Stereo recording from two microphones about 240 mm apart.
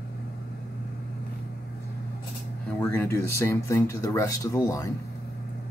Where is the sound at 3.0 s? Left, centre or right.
Centre.